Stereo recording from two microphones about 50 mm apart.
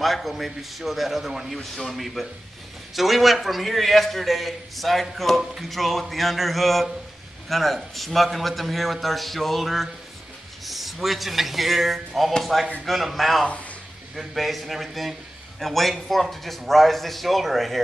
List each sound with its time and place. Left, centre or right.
0.0 s a man's voice: centre
13.5 s a sound: left
14.1 s a man's voice: centre